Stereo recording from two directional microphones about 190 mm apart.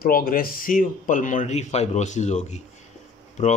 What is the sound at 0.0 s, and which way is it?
Speech, 50° left (ahead or behind).